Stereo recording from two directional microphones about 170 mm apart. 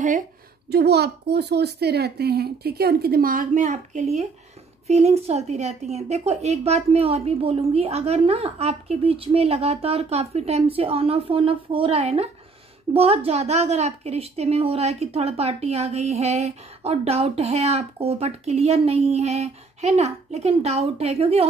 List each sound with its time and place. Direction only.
0.7 s a woman's voice: 75° right (ahead or behind); by 21.5 s 35° right (ahead or behind)